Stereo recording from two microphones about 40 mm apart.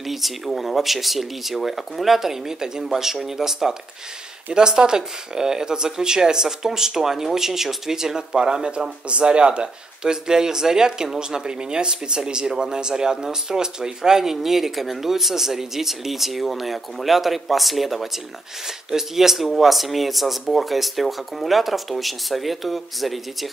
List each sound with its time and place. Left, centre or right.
0.0 s speech: centre